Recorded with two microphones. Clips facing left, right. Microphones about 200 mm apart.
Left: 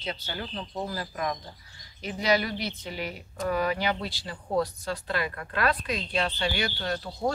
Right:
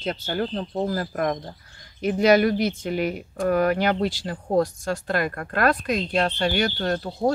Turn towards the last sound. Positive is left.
turn(degrees=-45)  # may be behind; listen again after turning